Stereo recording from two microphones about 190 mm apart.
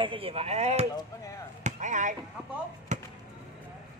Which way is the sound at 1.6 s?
40° right (ahead or behind).